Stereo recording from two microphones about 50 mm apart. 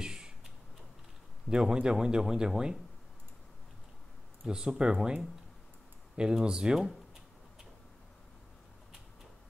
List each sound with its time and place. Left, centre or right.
0.0 s a sound: centre
1.5 s speech: centre
4.5 s speech: centre